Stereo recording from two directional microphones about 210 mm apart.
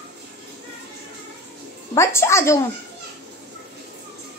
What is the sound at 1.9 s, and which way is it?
Speech, 15° left (ahead or behind).